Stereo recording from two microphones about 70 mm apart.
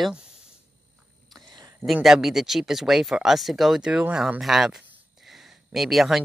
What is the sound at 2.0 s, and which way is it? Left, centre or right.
Speech, centre.